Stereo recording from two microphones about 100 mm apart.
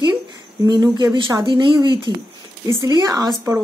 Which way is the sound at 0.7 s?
40° right (ahead or behind).